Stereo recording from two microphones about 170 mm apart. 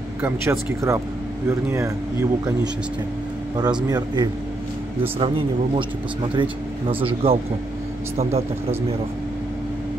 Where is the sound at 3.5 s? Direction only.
25° right (ahead or behind).